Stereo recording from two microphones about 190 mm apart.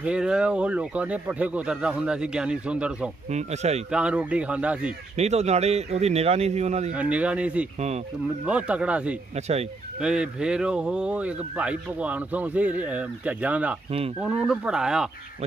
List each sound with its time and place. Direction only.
0.0 s speech: 5° right (ahead or behind)
3.3 s speech: 35° right (ahead or behind)
3.9 s speech: 5° right (ahead or behind)
5.1 s speech: 35° right (ahead or behind)
6.9 s speech: 5° right (ahead or behind)